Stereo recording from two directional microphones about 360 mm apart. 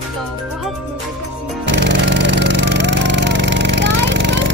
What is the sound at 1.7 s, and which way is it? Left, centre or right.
Music, right.